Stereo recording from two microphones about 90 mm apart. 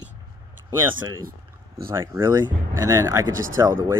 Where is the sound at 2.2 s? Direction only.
35° right (ahead or behind).